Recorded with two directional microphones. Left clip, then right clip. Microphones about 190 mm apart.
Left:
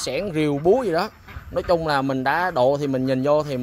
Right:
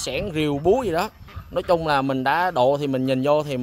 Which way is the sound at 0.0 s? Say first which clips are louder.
Left 1 dB; 5° right (ahead or behind).